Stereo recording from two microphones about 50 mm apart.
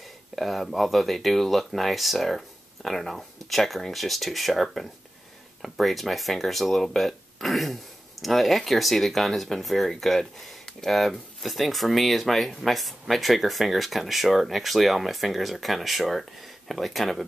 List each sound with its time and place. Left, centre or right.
0.4 s speech: centre